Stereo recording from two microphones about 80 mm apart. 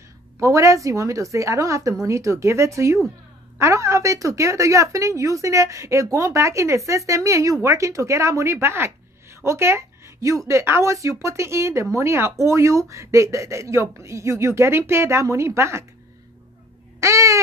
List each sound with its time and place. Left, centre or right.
0.4 s a woman's voice: right
17.0 s a woman's voice: right